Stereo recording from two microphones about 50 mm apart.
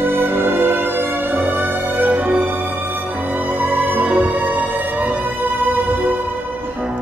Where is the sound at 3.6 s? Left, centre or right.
Right.